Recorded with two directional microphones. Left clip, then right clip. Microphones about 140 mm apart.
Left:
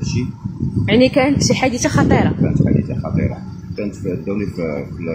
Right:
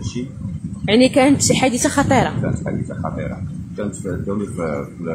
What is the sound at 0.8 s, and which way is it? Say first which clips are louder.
A woman's voice: even; 30° right (ahead or behind).